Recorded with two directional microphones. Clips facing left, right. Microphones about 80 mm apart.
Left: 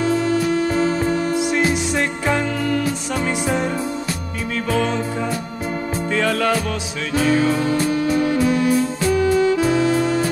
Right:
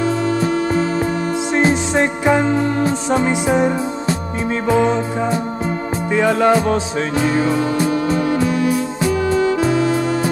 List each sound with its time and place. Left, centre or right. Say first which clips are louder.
1.5 s music: right 3 dB; right